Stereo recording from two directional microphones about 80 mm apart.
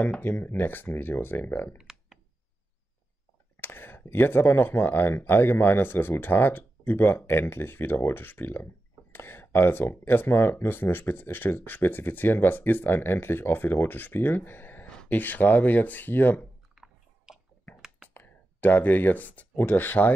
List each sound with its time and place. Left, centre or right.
0.2 s speech: left
1.8 s a sound: centre
3.6 s speech: left
16.7 s biting: centre
18.1 s speech: left